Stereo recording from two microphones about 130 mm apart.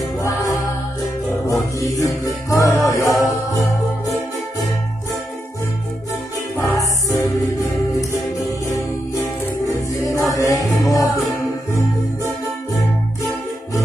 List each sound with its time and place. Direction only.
0.2 s music: 25° left (ahead or behind)
6.5 s music: 20° left (ahead or behind)